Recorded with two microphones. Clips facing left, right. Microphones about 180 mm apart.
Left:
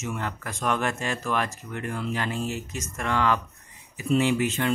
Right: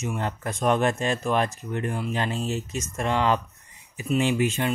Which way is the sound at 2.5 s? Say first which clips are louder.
Right 3 dB; 15° left (ahead or behind).